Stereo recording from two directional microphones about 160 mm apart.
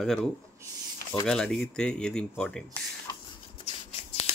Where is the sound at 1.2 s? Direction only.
5° left (ahead or behind).